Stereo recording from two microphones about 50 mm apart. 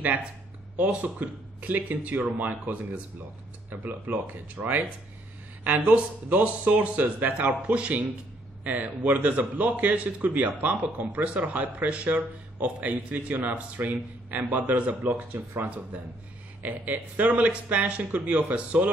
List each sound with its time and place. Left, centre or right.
1.0 s a man's voice: right
15.1 s speech: right
15.9 s a man's voice: right